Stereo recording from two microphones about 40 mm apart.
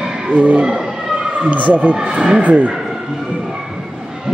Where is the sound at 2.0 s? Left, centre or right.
Centre.